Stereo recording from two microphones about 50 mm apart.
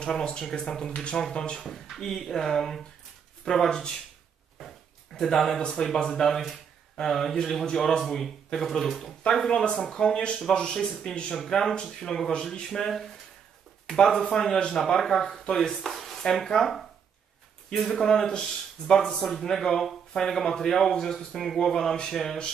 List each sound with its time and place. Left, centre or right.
0.0 s speech: centre
1.6 s speech: centre
4.6 s a sound: centre
6.0 s speech: centre